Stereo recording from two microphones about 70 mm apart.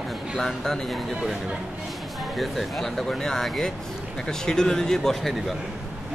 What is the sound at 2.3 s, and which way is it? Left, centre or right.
Speech, centre.